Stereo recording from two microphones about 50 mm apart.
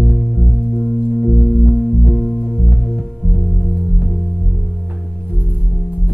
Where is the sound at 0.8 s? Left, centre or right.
Centre.